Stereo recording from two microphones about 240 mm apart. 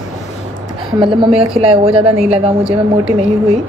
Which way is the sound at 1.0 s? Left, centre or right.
Centre.